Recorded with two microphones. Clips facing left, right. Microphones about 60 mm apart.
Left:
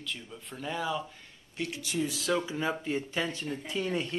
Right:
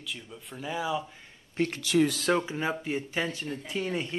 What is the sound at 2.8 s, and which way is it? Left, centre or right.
Speech, centre.